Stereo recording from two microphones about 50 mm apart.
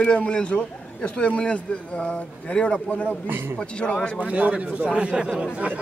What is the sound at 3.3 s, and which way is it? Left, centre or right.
Speech, right.